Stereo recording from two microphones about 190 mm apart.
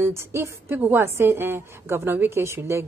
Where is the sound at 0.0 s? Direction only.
15° right (ahead or behind).